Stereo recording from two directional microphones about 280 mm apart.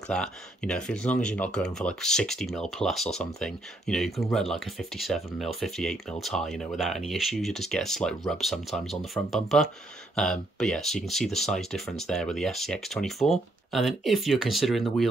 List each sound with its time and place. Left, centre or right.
0.1 s speech: centre